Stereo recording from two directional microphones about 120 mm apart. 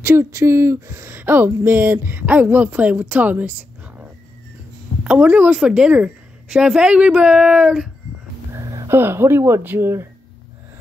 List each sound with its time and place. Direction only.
0.0 s speech: 20° right (ahead or behind)
5.0 s speech: 10° right (ahead or behind)
8.5 s speech: 30° right (ahead or behind)